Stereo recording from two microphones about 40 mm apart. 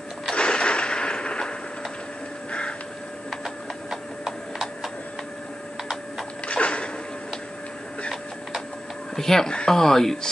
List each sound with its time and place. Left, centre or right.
0.3 s a sound: left
3.4 s clip-clop: centre
6.4 s music: left
9.1 s speech: centre